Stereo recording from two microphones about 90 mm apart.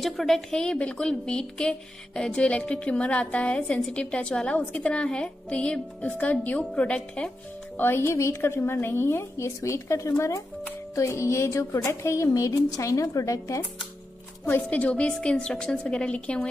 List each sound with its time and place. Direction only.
0.0 s a woman's voice: 5° left (ahead or behind)
7.7 s a woman's voice: 25° left (ahead or behind)
14.4 s a woman's voice: 20° left (ahead or behind)